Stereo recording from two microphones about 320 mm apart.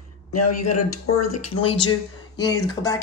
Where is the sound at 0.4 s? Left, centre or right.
Left.